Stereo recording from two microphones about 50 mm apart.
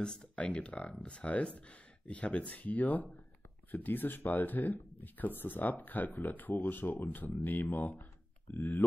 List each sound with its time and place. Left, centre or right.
0.0 s speech: centre
0.5 s speech: left